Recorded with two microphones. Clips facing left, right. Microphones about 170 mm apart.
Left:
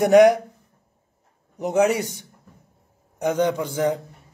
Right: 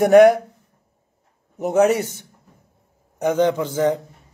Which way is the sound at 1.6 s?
15° left (ahead or behind).